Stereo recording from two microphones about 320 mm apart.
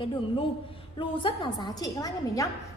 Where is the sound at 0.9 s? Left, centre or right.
Centre.